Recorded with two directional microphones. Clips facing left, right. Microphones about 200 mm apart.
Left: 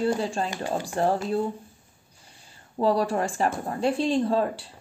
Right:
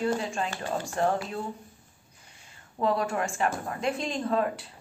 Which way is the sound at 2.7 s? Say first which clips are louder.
Left 4 dB; 35° left (ahead or behind).